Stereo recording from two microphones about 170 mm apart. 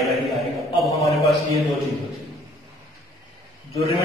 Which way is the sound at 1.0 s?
35° left (ahead or behind).